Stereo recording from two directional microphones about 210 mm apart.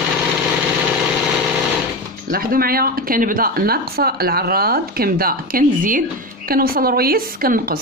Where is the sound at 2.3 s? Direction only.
45° right (ahead or behind).